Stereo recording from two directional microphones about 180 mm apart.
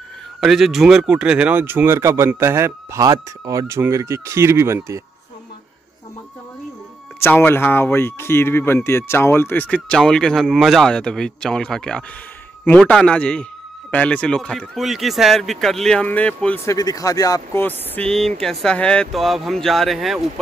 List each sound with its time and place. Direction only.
0.4 s speech: centre (ahead or behind)
7.2 s a man's voice: 15° left (ahead or behind)
16.6 s a man's voice: 20° left (ahead or behind); by 20.2 s centre (ahead or behind)